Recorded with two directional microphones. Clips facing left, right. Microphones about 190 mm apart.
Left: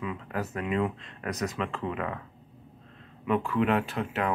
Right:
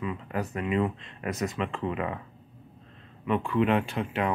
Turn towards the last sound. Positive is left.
turn(degrees=0)  # may be behind; listen again after turning